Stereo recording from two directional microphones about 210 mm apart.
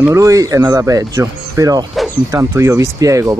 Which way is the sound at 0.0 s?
15° right (ahead or behind).